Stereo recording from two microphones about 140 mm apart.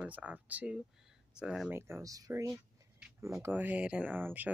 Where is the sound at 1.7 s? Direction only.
20° right (ahead or behind).